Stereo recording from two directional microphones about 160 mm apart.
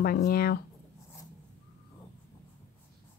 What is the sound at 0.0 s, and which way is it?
Speech, 70° left (ahead or behind).